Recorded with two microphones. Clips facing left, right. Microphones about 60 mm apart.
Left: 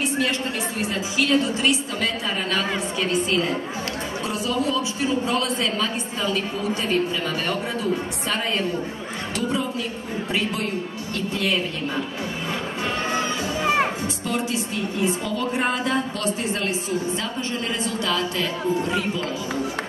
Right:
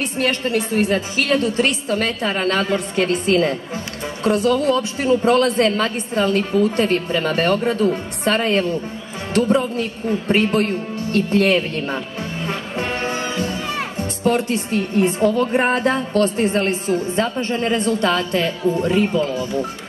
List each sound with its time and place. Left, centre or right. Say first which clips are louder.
0.0 s a woman's voice: right 3 dB; right
14.2 s a woman's voice: right 9 dB; right